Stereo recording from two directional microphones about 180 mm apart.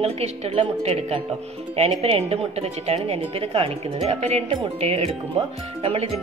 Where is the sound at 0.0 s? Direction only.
35° right (ahead or behind).